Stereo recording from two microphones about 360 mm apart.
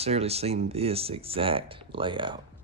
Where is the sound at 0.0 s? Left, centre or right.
Centre.